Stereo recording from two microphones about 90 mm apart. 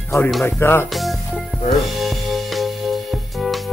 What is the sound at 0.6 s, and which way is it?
Speech, 25° left (ahead or behind).